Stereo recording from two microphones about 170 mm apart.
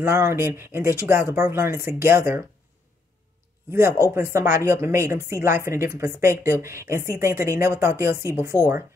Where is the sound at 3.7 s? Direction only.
15° right (ahead or behind).